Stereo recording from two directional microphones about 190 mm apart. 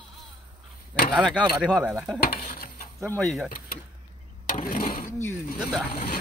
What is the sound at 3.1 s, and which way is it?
Speech, centre (ahead or behind).